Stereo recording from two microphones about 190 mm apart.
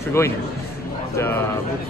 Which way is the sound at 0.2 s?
15° left (ahead or behind).